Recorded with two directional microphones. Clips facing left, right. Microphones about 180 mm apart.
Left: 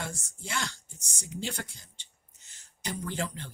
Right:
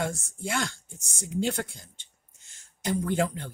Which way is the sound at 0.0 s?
50° right (ahead or behind).